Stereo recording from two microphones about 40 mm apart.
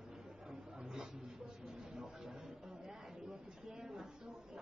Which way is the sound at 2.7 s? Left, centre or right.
Centre.